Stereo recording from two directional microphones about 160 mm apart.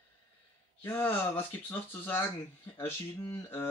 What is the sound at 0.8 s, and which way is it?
Speech, 15° left (ahead or behind).